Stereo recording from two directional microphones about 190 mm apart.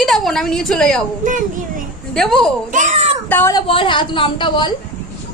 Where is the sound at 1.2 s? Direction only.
45° right (ahead or behind).